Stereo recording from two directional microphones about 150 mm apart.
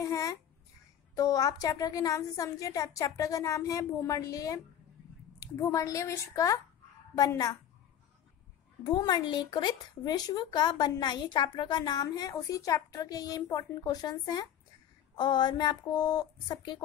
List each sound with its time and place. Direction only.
0.0 s a sound: 20° left (ahead or behind)
1.1 s speech: 25° left (ahead or behind)
8.8 s speech: 30° left (ahead or behind)